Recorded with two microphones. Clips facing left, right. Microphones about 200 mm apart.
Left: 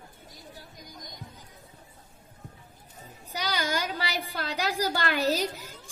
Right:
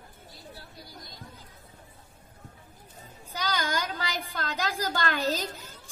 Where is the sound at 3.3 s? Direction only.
15° left (ahead or behind).